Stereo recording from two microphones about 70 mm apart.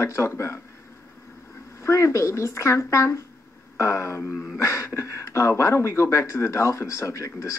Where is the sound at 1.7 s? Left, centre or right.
Left.